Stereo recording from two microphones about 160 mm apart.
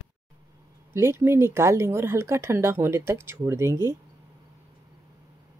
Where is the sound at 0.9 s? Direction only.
15° right (ahead or behind).